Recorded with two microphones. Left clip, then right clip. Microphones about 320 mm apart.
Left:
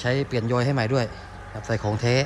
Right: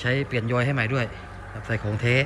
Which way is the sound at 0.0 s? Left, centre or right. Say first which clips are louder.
Left 1 dB; centre.